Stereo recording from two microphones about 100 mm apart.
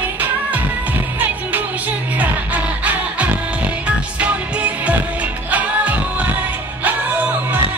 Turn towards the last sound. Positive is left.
turn(degrees=-20)  # may be behind; listen again after turning